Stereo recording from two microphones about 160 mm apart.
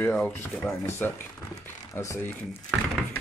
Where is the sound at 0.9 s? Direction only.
15° left (ahead or behind).